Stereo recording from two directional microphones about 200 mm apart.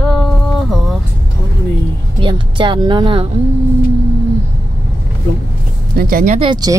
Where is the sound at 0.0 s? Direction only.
5° left (ahead or behind).